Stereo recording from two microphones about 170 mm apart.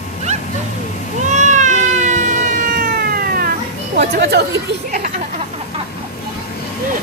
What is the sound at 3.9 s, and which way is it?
Speech, 75° right (ahead or behind).